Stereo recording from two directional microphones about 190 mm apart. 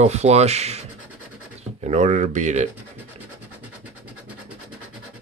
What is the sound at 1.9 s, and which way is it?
Speech, 35° right (ahead or behind).